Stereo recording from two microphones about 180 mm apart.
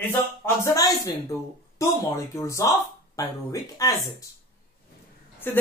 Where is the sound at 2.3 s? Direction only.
15° left (ahead or behind).